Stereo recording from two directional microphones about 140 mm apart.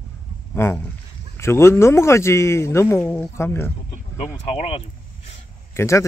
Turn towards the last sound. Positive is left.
turn(degrees=20)  # may be behind; listen again after turning